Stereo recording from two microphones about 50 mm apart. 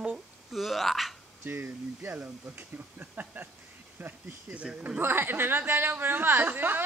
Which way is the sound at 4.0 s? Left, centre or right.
Right.